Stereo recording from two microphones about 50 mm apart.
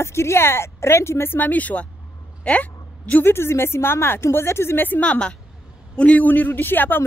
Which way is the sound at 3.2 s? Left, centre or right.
Left.